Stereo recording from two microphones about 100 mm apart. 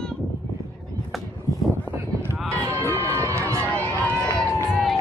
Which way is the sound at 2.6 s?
30° right (ahead or behind).